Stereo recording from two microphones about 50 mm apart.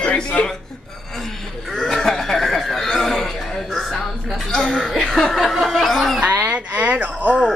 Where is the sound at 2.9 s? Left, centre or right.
Centre.